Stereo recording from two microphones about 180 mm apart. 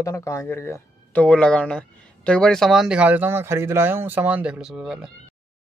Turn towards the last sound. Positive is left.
turn(degrees=-5)  # may be behind; listen again after turning